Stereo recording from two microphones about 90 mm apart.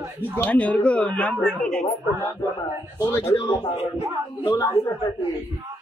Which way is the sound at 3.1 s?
35° left (ahead or behind).